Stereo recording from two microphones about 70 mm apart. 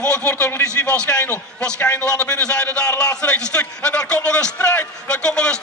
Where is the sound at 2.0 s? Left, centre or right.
Centre.